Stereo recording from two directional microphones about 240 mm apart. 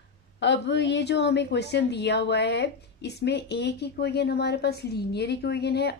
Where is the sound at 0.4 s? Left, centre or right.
Left.